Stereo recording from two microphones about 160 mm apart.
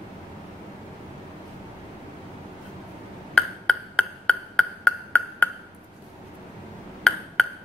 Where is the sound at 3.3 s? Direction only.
5° left (ahead or behind).